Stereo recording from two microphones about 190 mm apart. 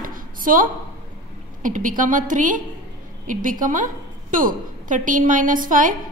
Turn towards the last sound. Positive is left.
turn(degrees=-45)  # may be behind; listen again after turning